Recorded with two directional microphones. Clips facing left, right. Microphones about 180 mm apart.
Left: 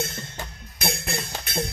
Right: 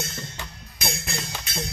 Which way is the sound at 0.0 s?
55° left (ahead or behind).